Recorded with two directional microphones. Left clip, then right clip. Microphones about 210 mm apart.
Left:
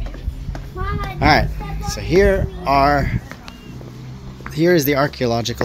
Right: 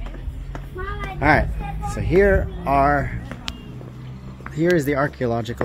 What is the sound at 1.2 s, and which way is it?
Speech, 5° left (ahead or behind).